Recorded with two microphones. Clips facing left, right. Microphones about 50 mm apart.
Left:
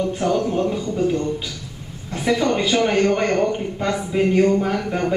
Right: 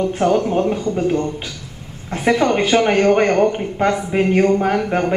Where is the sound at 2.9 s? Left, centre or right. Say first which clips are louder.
Right 4 dB; right.